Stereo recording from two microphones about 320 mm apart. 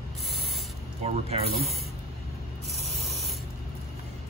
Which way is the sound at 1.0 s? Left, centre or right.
Centre.